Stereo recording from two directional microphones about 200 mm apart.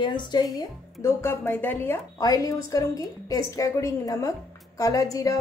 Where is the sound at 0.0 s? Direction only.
25° left (ahead or behind).